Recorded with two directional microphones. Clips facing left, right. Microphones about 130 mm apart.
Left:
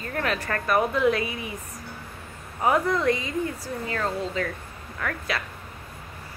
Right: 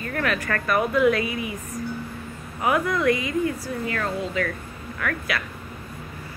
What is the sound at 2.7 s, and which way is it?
A woman's voice, 30° left (ahead or behind).